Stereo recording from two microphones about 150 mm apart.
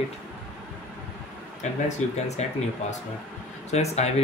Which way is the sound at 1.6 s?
50° left (ahead or behind).